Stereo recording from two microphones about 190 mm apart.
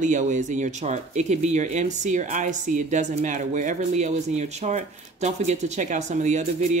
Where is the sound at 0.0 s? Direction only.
40° right (ahead or behind).